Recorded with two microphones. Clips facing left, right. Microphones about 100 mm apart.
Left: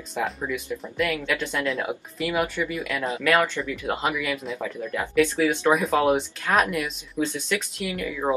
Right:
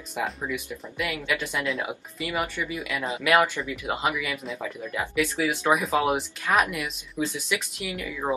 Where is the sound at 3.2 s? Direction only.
15° right (ahead or behind).